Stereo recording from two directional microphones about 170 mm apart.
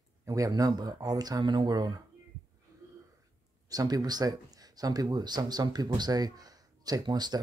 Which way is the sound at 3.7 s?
20° right (ahead or behind).